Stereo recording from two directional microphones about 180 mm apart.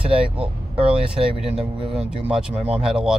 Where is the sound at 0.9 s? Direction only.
5° right (ahead or behind).